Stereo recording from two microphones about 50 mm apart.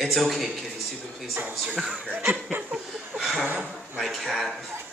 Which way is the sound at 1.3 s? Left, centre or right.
Right.